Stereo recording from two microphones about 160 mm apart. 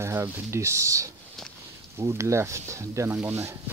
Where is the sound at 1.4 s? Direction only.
Centre (ahead or behind).